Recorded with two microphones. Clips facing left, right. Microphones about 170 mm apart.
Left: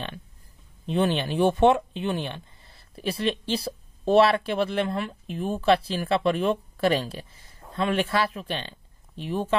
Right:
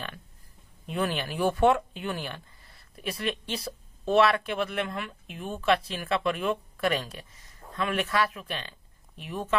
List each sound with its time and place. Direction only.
0.8 s speech: 25° left (ahead or behind)